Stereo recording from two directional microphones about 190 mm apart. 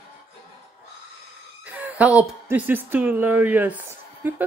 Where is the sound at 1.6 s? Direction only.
10° right (ahead or behind).